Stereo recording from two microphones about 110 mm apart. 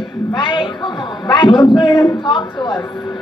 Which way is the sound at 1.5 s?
40° left (ahead or behind).